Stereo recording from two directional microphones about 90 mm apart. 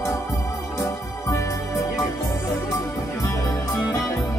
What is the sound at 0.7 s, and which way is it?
Music, 35° left (ahead or behind).